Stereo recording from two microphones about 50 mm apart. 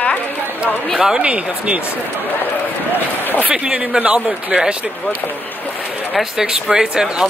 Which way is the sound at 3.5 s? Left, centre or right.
Right.